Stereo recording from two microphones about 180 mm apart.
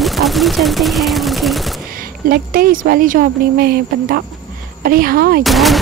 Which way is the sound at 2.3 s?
55° right (ahead or behind).